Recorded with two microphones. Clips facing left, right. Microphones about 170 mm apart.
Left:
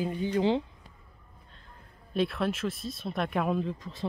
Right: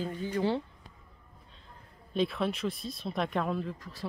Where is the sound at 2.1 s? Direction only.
Centre (ahead or behind).